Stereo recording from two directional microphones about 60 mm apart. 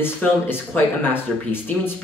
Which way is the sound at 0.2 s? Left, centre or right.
Left.